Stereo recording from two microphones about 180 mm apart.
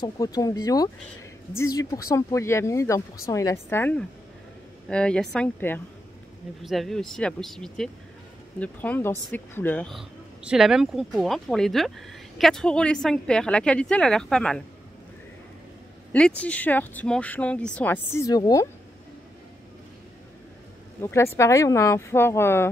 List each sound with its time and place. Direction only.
0.0 s speech: 20° left (ahead or behind); by 14.6 s 5° left (ahead or behind)
16.1 s speech: 5° left (ahead or behind)
21.0 s speech: 15° left (ahead or behind)